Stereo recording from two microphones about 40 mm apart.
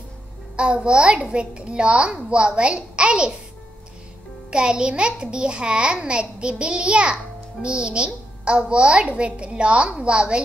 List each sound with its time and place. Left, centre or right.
0.6 s a child's voice: right
4.5 s a child's voice: right